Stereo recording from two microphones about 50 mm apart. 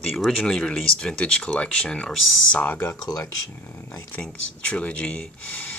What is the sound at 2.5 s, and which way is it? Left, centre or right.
Speech, left.